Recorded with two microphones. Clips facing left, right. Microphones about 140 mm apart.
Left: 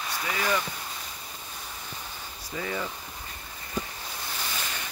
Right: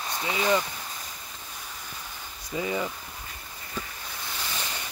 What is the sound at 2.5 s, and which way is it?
Speech, 15° right (ahead or behind).